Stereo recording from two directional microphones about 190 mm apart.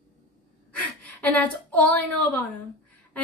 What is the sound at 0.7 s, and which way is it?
A woman's voice, 10° left (ahead or behind).